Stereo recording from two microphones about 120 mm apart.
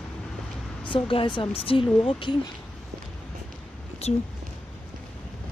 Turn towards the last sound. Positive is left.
turn(degrees=60)  # may be behind; listen again after turning